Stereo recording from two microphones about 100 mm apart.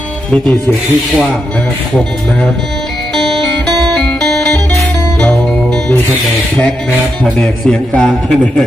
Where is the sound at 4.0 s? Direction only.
10° left (ahead or behind).